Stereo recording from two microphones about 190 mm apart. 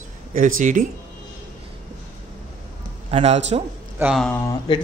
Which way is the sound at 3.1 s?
35° right (ahead or behind).